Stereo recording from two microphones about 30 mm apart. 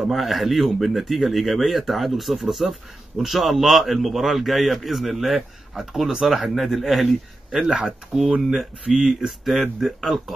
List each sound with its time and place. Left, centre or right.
0.1 s speech: centre
7.6 s speech: right